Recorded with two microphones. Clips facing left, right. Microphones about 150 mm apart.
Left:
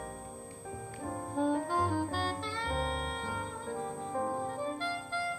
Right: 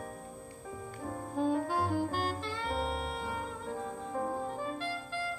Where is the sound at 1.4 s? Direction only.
35° left (ahead or behind).